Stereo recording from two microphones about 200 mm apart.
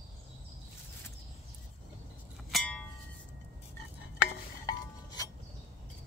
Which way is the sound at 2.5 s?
5° left (ahead or behind).